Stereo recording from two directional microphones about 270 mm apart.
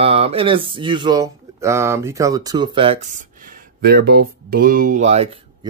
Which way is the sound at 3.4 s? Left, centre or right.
Right.